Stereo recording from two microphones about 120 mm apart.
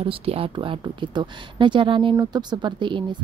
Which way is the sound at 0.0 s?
55° right (ahead or behind).